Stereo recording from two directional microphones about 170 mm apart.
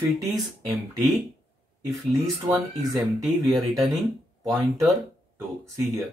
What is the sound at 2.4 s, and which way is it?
Speech, 25° right (ahead or behind).